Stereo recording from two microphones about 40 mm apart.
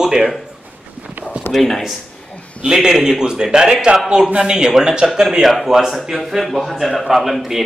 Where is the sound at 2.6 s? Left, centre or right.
Centre.